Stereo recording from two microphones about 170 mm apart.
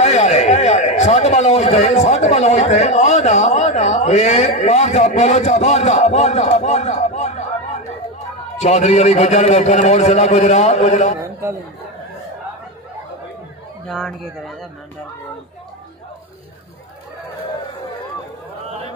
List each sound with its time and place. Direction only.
0.0 s a man's voice: 40° left (ahead or behind)
8.5 s a man's voice: 40° left (ahead or behind)
13.8 s speech: 5° left (ahead or behind)